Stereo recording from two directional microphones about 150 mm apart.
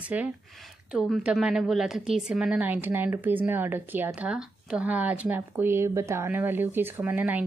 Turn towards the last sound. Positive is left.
turn(degrees=-10)  # may be behind; listen again after turning